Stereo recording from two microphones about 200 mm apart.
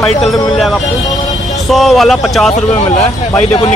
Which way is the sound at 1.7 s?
Centre (ahead or behind).